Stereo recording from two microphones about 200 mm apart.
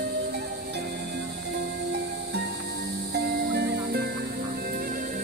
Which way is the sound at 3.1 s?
60° right (ahead or behind).